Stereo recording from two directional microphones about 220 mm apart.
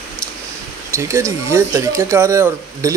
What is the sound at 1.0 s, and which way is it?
Speech, 15° right (ahead or behind).